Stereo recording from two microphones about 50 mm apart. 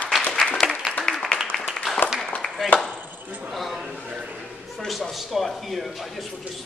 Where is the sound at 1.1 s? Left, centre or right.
Centre.